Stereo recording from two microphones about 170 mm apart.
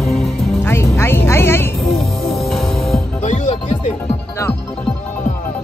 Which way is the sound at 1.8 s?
Centre (ahead or behind).